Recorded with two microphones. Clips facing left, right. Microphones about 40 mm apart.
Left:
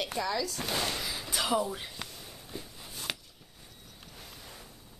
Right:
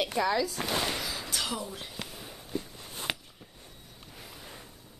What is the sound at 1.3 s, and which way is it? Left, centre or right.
Speech, centre.